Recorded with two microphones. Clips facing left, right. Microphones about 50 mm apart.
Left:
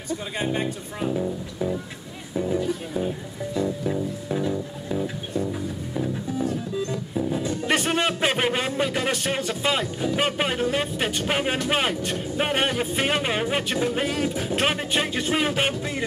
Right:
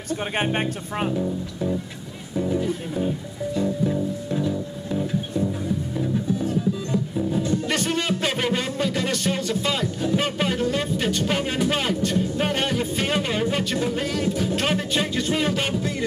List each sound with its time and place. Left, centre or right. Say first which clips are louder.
0.1 s speech: right 3 dB; right
1.1 s speech: right 1 dB; centre
3.5 s music: right 2 dB; centre
6.9 s music: right 2 dB; centre
7.6 s music: left 1 dB; left
13.9 s speech: right 1 dB; left